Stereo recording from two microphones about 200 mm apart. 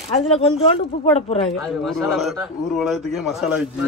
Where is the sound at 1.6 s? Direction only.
Centre (ahead or behind).